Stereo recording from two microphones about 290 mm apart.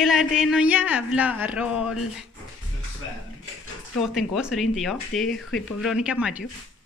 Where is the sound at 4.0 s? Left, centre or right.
Centre.